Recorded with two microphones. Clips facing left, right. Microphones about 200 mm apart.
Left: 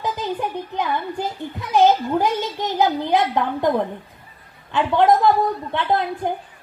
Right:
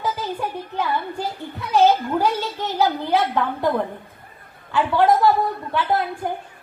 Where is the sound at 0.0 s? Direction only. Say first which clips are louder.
Left 1 dB; 15° left (ahead or behind).